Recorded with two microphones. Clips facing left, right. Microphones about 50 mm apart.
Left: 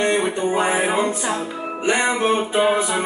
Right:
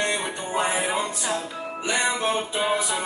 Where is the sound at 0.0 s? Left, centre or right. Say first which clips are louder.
Left 7 dB; left.